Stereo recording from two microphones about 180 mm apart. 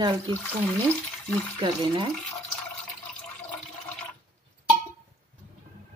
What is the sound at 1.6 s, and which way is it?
Speech, 25° right (ahead or behind).